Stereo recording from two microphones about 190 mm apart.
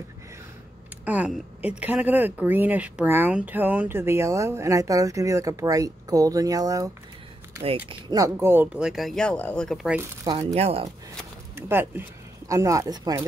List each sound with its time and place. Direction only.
1.0 s speech: 5° right (ahead or behind)
10.2 s speech: 20° right (ahead or behind)
10.5 s speech: 30° right (ahead or behind)
11.5 s speech: 10° right (ahead or behind)